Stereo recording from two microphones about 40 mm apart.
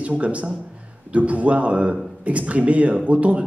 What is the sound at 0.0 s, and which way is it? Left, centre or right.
A man's voice, right.